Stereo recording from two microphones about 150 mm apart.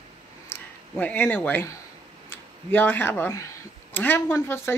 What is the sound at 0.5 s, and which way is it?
Speech, 10° left (ahead or behind).